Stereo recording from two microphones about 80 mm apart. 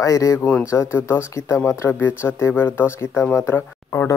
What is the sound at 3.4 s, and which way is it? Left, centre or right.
Speech, left.